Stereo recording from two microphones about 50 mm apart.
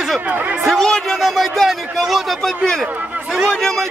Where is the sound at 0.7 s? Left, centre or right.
Centre.